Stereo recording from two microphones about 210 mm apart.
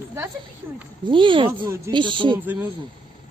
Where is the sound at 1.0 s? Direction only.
25° right (ahead or behind).